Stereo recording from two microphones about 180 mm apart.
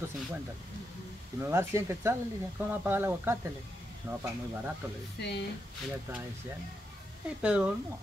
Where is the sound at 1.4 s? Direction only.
15° right (ahead or behind).